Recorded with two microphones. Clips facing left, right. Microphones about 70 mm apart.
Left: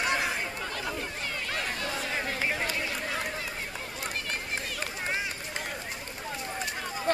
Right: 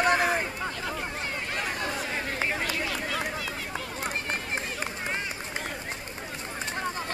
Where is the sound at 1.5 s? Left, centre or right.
Right.